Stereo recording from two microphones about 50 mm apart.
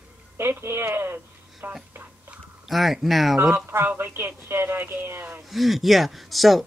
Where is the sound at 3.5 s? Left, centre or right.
Right.